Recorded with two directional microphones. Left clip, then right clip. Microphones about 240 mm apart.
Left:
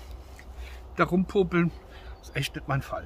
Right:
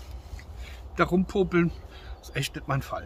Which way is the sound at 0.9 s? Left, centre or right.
Centre.